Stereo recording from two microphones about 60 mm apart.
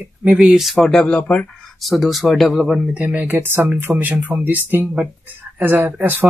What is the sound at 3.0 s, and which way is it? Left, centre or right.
Speech, right.